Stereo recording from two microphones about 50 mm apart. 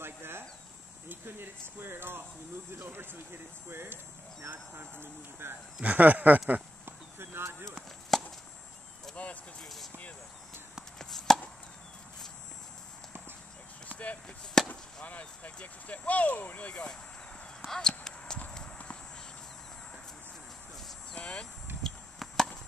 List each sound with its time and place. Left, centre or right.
0.0 s a sound: right
1.2 s speech: right
5.8 s speech: right
6.9 s a sound: right
8.1 s chop: centre
9.1 s speech: left
11.0 s chopping: centre
14.2 s speech: centre
15.0 s speech: left
17.6 s a sound: centre
21.1 s speech: left
21.8 s chop: centre